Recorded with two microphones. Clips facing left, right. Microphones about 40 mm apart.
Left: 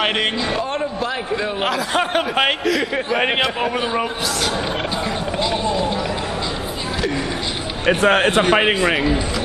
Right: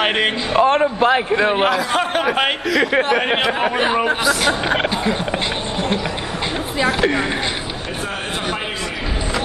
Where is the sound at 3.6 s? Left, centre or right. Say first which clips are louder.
Right 3 dB; right.